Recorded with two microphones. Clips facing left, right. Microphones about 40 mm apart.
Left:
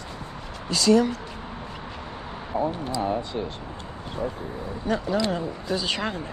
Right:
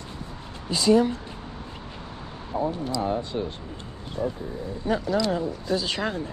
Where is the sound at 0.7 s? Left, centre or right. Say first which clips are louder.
Even; centre.